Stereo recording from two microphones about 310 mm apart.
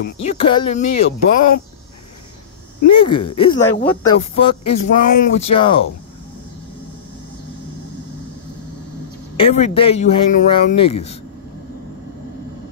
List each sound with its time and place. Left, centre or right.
0.0 s speech: left
2.8 s speech: centre
9.4 s speech: centre